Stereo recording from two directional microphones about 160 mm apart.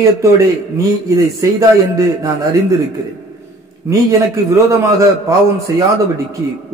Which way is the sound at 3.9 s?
20° right (ahead or behind).